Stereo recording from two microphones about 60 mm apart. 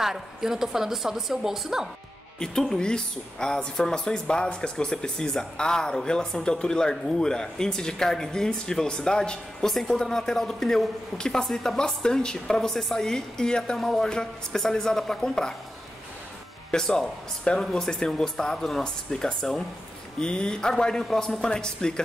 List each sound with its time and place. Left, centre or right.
0.0 s a woman's voice: centre
2.3 s speech: centre
16.7 s speech: centre